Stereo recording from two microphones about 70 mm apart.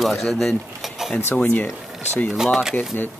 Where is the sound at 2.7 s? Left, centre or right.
Left.